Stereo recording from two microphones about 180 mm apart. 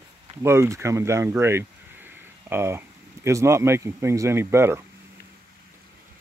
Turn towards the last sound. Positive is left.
turn(degrees=-15)  # may be behind; listen again after turning